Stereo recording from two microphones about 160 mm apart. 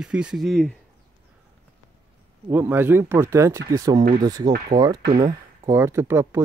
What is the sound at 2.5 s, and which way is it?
Speech, 15° right (ahead or behind).